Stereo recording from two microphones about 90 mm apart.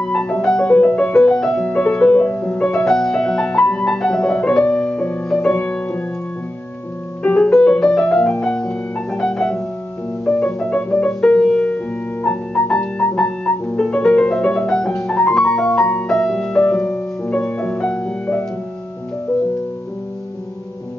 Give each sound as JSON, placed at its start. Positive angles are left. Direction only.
{"t": 0.0, "sound": "music", "side_deg": 10}
{"t": 7.2, "sound": "music", "side_deg": 10}
{"t": 10.2, "sound": "harp", "side_deg": 15}
{"t": 11.1, "sound": "music", "side_deg": 10}